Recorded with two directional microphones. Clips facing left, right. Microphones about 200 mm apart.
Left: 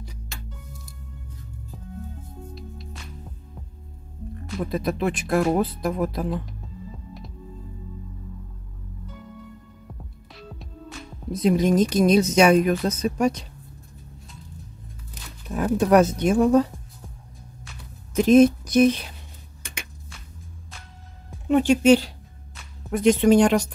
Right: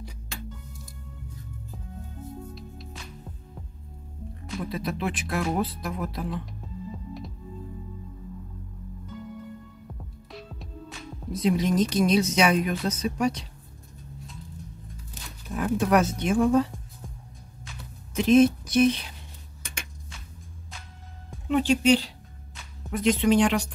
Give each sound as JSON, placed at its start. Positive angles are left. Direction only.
{"t": 2.5, "sound": "music", "side_deg": 0}
{"t": 4.6, "sound": "speech", "side_deg": 45}
{"t": 11.4, "sound": "speech", "side_deg": 45}
{"t": 15.5, "sound": "speech", "side_deg": 40}
{"t": 18.1, "sound": "speech", "side_deg": 45}
{"t": 21.5, "sound": "speech", "side_deg": 50}